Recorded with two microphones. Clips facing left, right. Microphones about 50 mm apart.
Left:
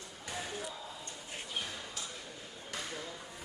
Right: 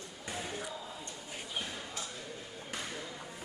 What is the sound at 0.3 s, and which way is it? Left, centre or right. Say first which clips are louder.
Basketball bounce: right 1 dB; right.